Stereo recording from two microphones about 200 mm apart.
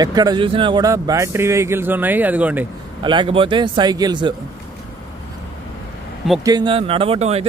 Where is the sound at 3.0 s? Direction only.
25° right (ahead or behind).